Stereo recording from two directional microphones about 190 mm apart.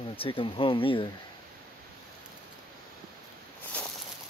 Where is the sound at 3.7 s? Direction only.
5° left (ahead or behind).